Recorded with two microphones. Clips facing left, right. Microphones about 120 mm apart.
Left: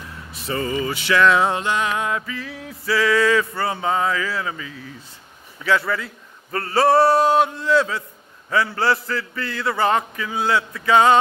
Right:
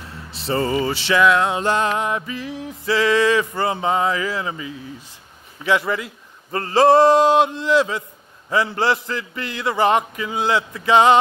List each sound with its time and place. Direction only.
0.3 s speech: 30° right (ahead or behind)
1.2 s music: centre (ahead or behind)
1.6 s music: 35° right (ahead or behind)
2.0 s a sound: 25° right (ahead or behind)